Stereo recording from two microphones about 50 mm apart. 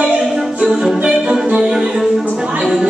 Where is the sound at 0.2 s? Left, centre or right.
Centre.